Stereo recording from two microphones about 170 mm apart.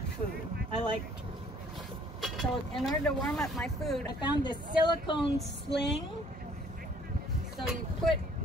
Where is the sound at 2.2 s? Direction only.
Centre (ahead or behind).